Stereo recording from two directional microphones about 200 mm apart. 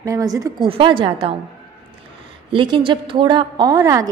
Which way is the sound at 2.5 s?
25° right (ahead or behind).